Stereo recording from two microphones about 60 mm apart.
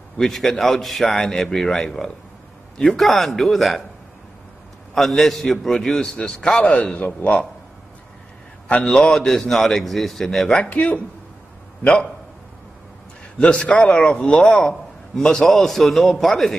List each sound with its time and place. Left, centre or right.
0.2 s a man's voice: centre
4.9 s a man's voice: centre; by 7.2 s left
8.8 s a man's voice: centre
10.6 s a man's voice: left
13.4 s a man's voice: centre
15.1 s a man's voice: centre